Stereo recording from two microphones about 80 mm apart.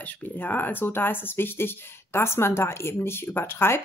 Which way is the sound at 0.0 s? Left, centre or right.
Left.